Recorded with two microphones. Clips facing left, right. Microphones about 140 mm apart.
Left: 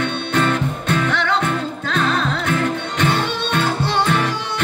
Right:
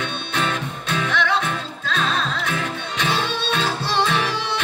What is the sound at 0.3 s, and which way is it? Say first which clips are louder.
Music: left 6 dB; 50° left (ahead or behind).